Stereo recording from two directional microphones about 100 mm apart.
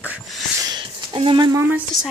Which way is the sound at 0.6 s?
40° right (ahead or behind).